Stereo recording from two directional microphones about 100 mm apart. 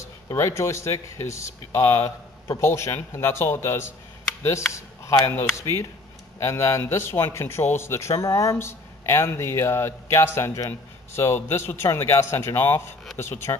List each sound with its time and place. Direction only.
0.0 s a man's voice: 30° left (ahead or behind)